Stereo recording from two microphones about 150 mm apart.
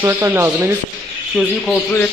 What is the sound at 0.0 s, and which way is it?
Speech, 15° right (ahead or behind).